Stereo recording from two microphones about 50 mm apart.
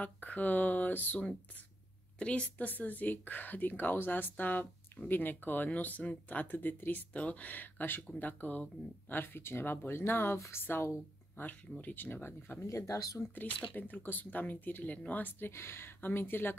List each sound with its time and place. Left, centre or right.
0.0 s a woman's voice: left
2.1 s a woman's voice: left
2.6 s a woman's voice: left
9.1 s speech: left
10.5 s speech: left
11.8 s speech: left
12.5 s speech: left
13.7 s a woman's voice: left
15.5 s speech: left